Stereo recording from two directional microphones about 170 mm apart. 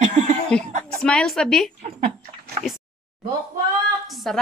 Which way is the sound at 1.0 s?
5° left (ahead or behind).